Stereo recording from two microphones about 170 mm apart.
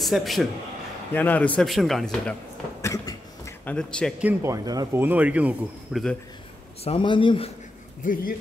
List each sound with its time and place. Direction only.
0.0 s speech: centre (ahead or behind)
2.8 s a sound: 20° left (ahead or behind)
3.7 s speech: 5° left (ahead or behind)
4.2 s speech: 15° right (ahead or behind)
5.0 s speech: 10° right (ahead or behind)
6.8 s speech: 30° left (ahead or behind)
8.0 s speech: 55° left (ahead or behind)